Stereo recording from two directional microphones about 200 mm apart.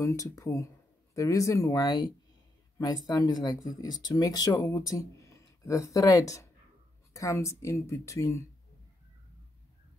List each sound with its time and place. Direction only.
0.0 s speech: 15° left (ahead or behind)